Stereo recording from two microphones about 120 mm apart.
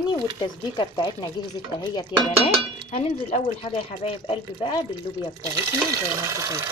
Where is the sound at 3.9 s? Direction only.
50° left (ahead or behind).